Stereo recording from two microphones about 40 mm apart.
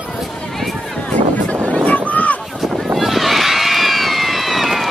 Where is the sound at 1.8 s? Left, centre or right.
Left.